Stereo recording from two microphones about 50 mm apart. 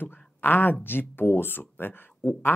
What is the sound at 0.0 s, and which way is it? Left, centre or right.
Speech, left.